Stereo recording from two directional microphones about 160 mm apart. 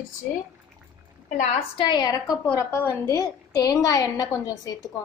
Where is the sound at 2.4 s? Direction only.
15° left (ahead or behind).